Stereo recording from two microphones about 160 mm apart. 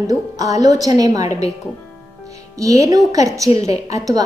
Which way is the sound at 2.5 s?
20° right (ahead or behind).